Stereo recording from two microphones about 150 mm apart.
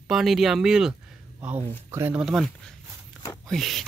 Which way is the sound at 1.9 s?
15° right (ahead or behind).